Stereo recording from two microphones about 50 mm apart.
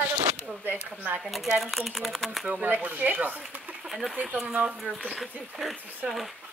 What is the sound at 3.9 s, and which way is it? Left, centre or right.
Speech, centre.